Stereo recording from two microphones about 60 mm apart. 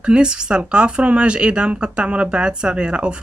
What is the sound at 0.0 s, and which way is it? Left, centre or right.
Speech, centre.